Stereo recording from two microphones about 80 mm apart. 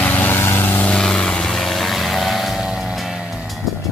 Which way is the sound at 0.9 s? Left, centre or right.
Centre.